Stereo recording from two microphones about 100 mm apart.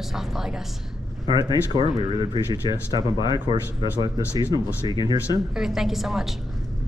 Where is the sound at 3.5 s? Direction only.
45° right (ahead or behind).